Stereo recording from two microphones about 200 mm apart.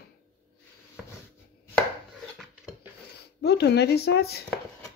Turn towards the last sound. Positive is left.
turn(degrees=50)  # may be behind; listen again after turning